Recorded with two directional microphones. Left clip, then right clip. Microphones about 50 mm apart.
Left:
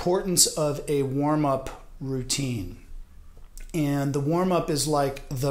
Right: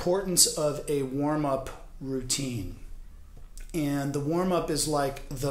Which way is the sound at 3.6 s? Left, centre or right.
Centre.